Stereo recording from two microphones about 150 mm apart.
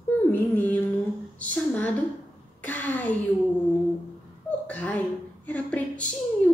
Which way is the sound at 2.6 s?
10° left (ahead or behind).